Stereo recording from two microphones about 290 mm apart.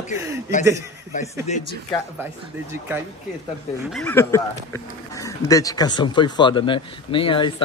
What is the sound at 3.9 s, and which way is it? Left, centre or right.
Speech, centre.